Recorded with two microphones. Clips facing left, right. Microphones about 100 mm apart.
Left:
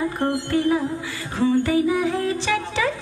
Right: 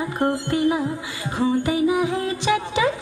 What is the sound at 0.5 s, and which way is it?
Music, 20° right (ahead or behind).